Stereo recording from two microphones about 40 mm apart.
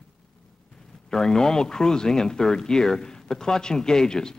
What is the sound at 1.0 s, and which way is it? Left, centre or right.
Speech, centre.